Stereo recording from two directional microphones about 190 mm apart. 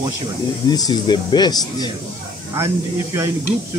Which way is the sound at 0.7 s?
20° left (ahead or behind).